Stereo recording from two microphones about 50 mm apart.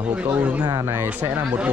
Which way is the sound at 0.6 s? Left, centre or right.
Right.